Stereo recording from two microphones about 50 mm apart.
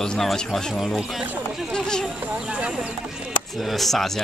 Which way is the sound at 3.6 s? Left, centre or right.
Centre.